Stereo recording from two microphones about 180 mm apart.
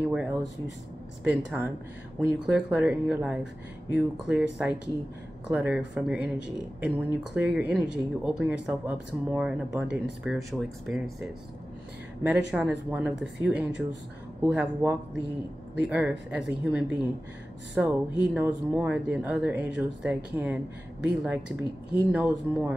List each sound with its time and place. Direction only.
0.0 s speech: 5° right (ahead or behind)